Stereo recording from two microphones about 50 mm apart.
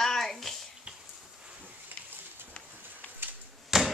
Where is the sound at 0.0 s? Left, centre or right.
Centre.